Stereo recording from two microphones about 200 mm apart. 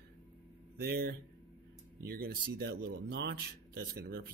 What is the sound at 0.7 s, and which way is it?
Speech, 50° right (ahead or behind).